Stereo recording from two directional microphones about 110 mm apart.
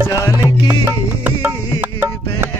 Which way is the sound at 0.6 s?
20° right (ahead or behind).